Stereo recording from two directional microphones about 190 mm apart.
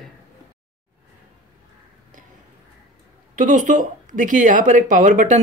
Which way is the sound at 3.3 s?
40° right (ahead or behind).